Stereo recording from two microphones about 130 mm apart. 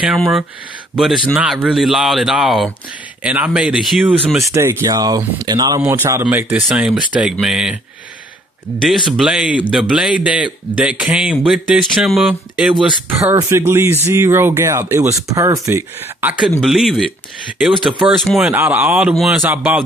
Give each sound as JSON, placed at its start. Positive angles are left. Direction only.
{"t": 0.0, "sound": "speech", "side_deg": -5}
{"t": 4.4, "sound": "speech", "side_deg": -25}
{"t": 6.3, "sound": "speech", "side_deg": -10}
{"t": 8.8, "sound": "speech", "side_deg": 0}
{"t": 13.2, "sound": "speech", "side_deg": -25}
{"t": 16.3, "sound": "speech", "side_deg": -5}
{"t": 18.5, "sound": "speech", "side_deg": -15}
{"t": 19.4, "sound": "speech", "side_deg": -15}